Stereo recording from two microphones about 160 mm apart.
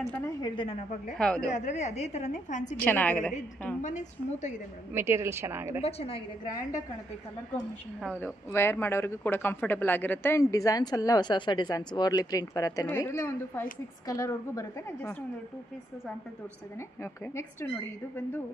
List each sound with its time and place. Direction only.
1.1 s speech: 5° left (ahead or behind)
1.5 s a woman's voice: 45° left (ahead or behind)
2.8 s a woman's voice: 10° left (ahead or behind)
3.8 s a woman's voice: 50° left (ahead or behind)
4.9 s a woman's voice: 15° right (ahead or behind)
5.8 s a woman's voice: 40° left (ahead or behind)
8.0 s speech: 5° left (ahead or behind)
8.5 s a woman's voice: 15° left (ahead or behind)
17.0 s a woman's voice: 15° left (ahead or behind)